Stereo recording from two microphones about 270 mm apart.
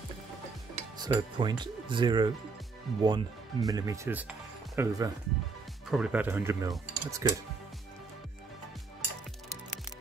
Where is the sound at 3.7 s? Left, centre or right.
Centre.